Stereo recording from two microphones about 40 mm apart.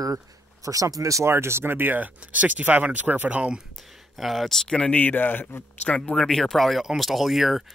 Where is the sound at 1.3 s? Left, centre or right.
Right.